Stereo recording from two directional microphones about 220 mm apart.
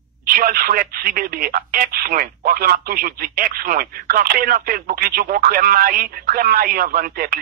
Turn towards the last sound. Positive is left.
turn(degrees=-40)  # may be behind; listen again after turning